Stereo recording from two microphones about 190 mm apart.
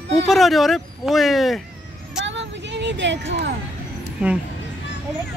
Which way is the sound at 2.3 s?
70° right (ahead or behind).